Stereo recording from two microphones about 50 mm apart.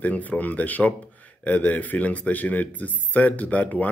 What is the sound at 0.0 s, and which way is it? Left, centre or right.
Speech, left.